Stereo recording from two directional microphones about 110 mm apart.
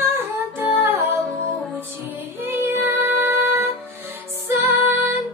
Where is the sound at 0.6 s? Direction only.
20° right (ahead or behind).